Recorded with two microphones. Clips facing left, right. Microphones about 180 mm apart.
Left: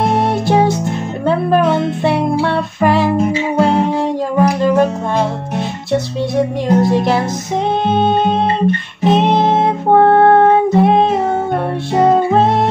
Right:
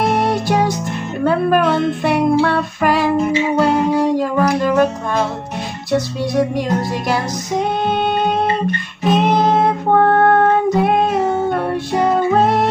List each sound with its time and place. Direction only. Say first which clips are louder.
0.1 s music: left 2 dB; 25° left (ahead or behind)
6.7 s music: left 6 dB; 25° left (ahead or behind)
7.9 s guitar: left 3 dB; 20° left (ahead or behind)
11.9 s music: left 4 dB; 25° left (ahead or behind)